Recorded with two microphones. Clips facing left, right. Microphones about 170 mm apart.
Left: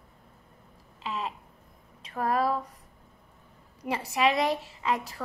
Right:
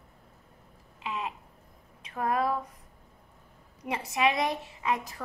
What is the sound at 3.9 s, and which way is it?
A woman's voice, 20° right (ahead or behind).